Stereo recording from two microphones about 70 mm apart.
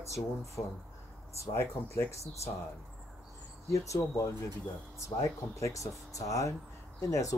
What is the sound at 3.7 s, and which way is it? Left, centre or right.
Speech, left.